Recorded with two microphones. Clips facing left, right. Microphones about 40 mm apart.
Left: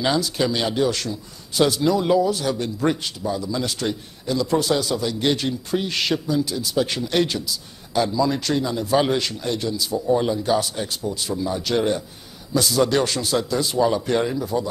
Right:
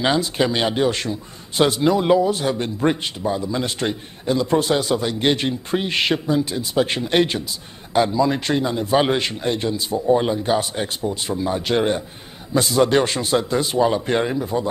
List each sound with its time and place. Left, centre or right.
0.0 s a man's voice: right